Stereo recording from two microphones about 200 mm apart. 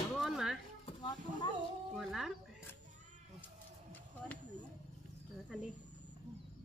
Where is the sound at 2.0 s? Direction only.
Centre (ahead or behind).